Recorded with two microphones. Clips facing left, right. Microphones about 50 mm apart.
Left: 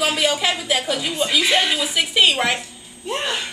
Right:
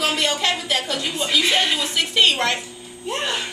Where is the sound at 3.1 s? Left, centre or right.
Centre.